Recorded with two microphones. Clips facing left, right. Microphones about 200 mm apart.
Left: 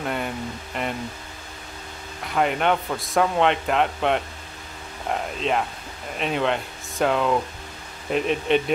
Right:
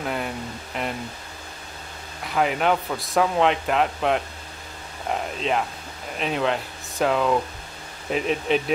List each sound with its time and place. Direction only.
0.0 s a man's voice: centre (ahead or behind)
2.2 s a man's voice: centre (ahead or behind)